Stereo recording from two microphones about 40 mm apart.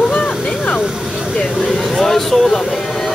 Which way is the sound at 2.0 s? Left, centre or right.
Centre.